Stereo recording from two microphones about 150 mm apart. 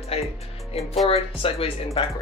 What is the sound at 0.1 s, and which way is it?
Music, 40° left (ahead or behind).